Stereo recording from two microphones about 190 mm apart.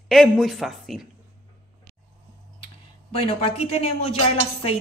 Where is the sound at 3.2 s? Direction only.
35° left (ahead or behind).